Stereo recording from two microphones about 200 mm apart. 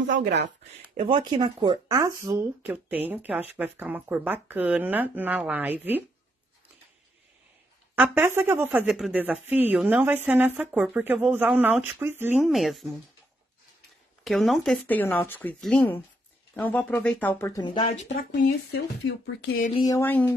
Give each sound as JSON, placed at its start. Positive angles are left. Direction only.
{"t": 0.9, "sound": "speech", "side_deg": -30}
{"t": 7.9, "sound": "speech", "side_deg": -10}
{"t": 14.2, "sound": "speech", "side_deg": 0}
{"t": 18.1, "sound": "speech", "side_deg": 45}
{"t": 18.7, "sound": "speech", "side_deg": 85}
{"t": 19.7, "sound": "speech", "side_deg": 20}